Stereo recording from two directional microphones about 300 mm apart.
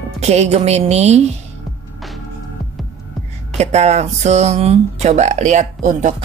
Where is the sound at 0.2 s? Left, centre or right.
Right.